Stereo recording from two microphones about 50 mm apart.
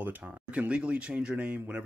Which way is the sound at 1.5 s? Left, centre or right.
Right.